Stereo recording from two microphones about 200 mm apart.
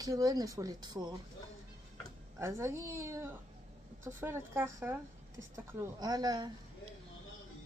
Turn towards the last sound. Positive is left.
turn(degrees=-20)  # may be behind; listen again after turning